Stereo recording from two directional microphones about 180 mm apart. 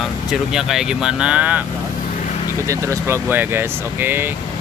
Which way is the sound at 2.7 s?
15° right (ahead or behind).